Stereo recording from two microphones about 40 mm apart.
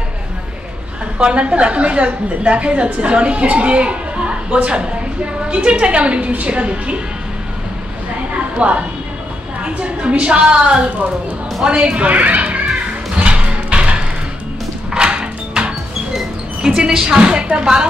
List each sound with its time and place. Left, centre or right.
1.1 s a woman's voice: right
8.5 s a woman's voice: right
11.6 s music: right
16.6 s a woman's voice: centre